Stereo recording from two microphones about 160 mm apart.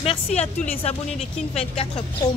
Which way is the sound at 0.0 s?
40° left (ahead or behind).